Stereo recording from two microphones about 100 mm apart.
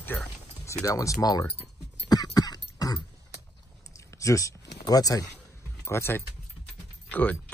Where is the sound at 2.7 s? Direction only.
40° left (ahead or behind).